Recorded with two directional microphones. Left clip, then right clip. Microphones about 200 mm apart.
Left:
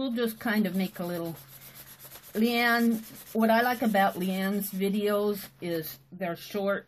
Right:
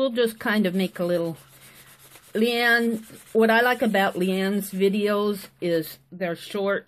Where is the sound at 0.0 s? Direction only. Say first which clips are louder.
Right 8 dB; 45° right (ahead or behind).